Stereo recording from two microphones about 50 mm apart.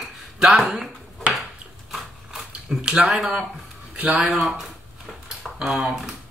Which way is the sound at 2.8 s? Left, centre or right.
Centre.